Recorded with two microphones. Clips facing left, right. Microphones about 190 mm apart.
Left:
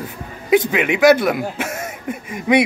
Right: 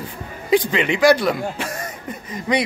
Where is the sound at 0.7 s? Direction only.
5° left (ahead or behind).